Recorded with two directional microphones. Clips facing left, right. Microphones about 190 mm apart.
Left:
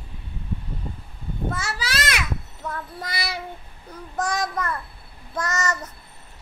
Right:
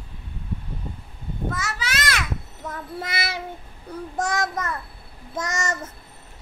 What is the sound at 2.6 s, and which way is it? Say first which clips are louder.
Child singing: right 1 dB; 25° right (ahead or behind).